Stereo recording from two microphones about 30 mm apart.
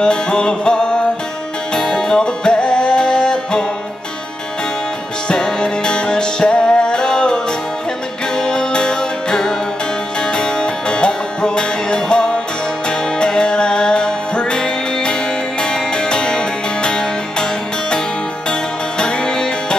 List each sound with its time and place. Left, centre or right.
0.0 s music: left
1.8 s music: left
5.3 s music: left
8.4 s music: left
18.5 s music: left